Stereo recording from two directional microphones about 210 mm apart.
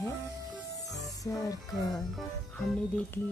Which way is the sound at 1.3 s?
15° left (ahead or behind).